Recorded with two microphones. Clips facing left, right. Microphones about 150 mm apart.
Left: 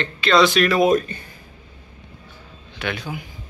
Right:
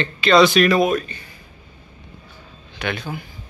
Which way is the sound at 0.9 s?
45° left (ahead or behind).